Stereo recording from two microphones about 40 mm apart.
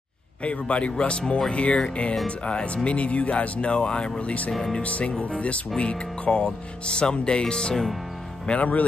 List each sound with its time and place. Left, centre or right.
0.4 s speech: left
4.8 s speech: left; by 7.9 s centre
8.5 s speech: left